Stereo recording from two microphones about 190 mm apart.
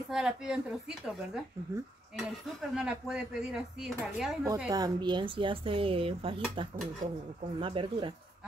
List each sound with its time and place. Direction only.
0.1 s speech: 5° right (ahead or behind)
2.7 s speech: 5° right (ahead or behind)
4.6 s dishes: 20° right (ahead or behind)
7.6 s dishes: 25° right (ahead or behind)